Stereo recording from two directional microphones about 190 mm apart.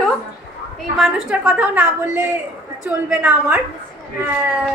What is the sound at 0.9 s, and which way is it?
A woman's voice, centre (ahead or behind).